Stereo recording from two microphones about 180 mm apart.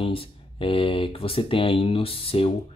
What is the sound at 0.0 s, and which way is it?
Speech, 30° left (ahead or behind).